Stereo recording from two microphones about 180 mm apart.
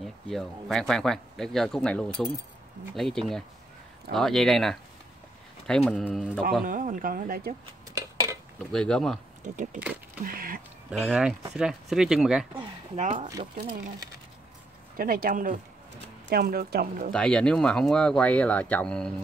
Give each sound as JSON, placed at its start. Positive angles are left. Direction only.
{"t": 0.0, "sound": "speech", "side_deg": 0}
{"t": 6.6, "sound": "speech", "side_deg": -50}
{"t": 7.9, "sound": "a sound", "side_deg": -15}
{"t": 8.7, "sound": "speech", "side_deg": 5}
{"t": 9.4, "sound": "speech", "side_deg": -45}
{"t": 10.2, "sound": "a sound", "side_deg": -50}
{"t": 10.9, "sound": "speech", "side_deg": -5}
{"t": 12.9, "sound": "speech", "side_deg": -45}
{"t": 15.0, "sound": "speech", "side_deg": -55}
{"t": 17.1, "sound": "speech", "side_deg": 5}